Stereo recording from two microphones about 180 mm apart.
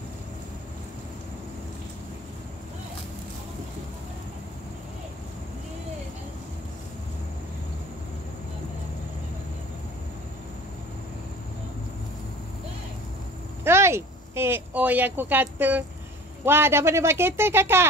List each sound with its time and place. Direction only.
13.7 s speech: 15° right (ahead or behind)